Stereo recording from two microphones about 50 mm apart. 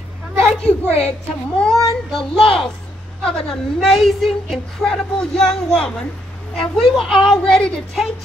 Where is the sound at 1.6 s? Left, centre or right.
Centre.